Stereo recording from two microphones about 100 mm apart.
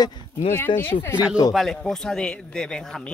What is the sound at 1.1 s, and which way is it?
Speech, 15° right (ahead or behind).